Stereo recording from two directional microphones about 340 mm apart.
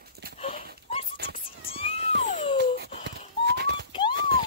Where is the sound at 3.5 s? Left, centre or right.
Right.